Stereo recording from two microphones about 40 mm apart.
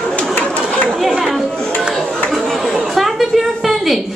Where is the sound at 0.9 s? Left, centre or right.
Centre.